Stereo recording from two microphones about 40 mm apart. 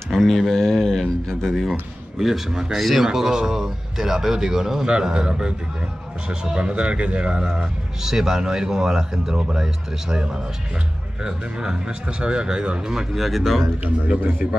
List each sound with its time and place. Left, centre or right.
0.1 s speech: centre
2.1 s a man's voice: centre
3.1 s a man's voice: centre
13.1 s speech: centre
13.8 s a man's voice: right